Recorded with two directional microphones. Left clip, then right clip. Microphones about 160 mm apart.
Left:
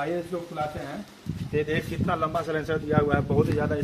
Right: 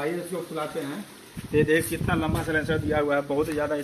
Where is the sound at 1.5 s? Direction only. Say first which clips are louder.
Right 5 dB; 60° left (ahead or behind).